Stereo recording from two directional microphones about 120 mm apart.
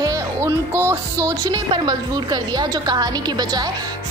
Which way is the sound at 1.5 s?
40° right (ahead or behind).